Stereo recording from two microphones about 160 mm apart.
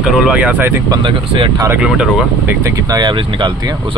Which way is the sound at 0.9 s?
30° right (ahead or behind).